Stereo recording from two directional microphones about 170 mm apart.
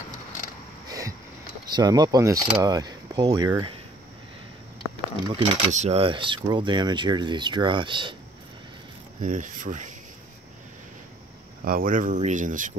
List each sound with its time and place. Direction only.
0.8 s a sound: 20° right (ahead or behind)
1.8 s speech: 25° right (ahead or behind)
5.2 s speech: 30° right (ahead or behind)
5.7 s speech: 40° right (ahead or behind)
9.2 s speech: 50° right (ahead or behind)
11.6 s speech: 55° right (ahead or behind)